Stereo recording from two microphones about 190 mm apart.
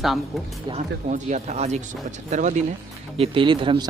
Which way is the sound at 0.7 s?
40° right (ahead or behind).